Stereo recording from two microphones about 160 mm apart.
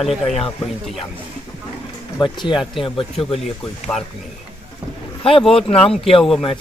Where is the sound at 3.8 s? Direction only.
45° left (ahead or behind).